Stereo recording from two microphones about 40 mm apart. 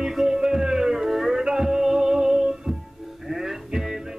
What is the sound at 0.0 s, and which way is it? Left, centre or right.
Music, centre.